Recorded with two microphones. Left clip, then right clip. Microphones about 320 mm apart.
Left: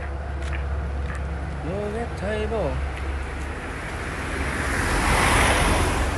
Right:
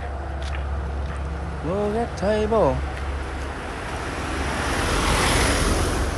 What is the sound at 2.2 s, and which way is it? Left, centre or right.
Speech, centre.